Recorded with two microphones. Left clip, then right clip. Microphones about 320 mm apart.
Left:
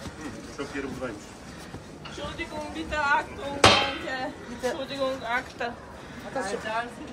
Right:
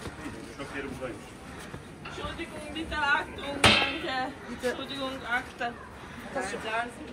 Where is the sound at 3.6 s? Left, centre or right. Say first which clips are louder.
Left 3 dB; left.